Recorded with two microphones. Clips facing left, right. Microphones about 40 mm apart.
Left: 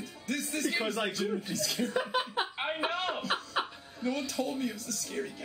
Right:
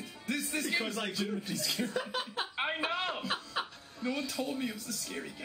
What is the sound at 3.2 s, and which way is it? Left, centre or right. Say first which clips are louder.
Laughter: left 3 dB; centre.